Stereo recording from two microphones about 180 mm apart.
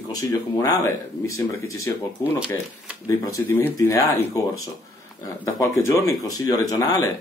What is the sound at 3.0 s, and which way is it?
Speech, 15° left (ahead or behind).